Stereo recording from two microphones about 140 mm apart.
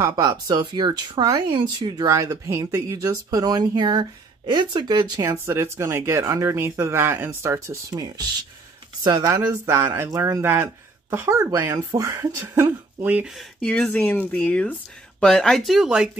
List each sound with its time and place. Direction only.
0.1 s speech: 30° right (ahead or behind); by 16.1 s 5° right (ahead or behind)